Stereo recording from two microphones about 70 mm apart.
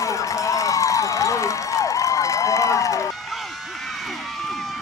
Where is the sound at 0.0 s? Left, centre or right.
Left.